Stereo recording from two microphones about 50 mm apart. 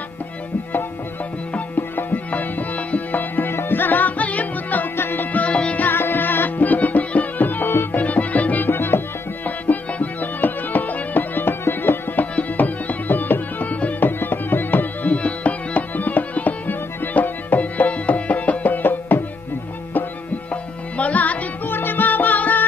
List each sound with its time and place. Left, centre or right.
1.8 s music: left
4.9 s music: left
5.9 s music: left
8.0 s music: left
9.7 s music: left
12.2 s music: left
15.0 s music: left
21.0 s music: left
21.6 s music: left